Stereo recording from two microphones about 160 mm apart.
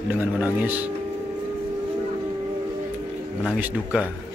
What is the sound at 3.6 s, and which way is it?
Speech, 10° right (ahead or behind).